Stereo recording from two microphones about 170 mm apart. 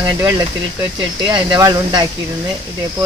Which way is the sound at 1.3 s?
25° right (ahead or behind).